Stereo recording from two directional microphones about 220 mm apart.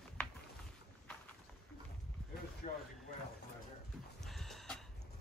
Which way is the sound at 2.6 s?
30° left (ahead or behind).